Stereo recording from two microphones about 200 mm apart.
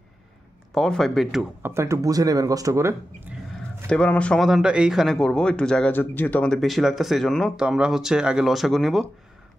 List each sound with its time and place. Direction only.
0.7 s speech: centre (ahead or behind)
1.6 s speech: 15° right (ahead or behind)
3.9 s speech: 5° left (ahead or behind)